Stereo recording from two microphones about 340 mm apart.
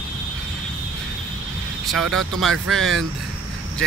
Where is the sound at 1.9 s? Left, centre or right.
Centre.